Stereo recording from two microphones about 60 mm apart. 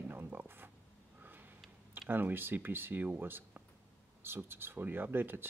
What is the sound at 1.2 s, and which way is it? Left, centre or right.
Sniff, right.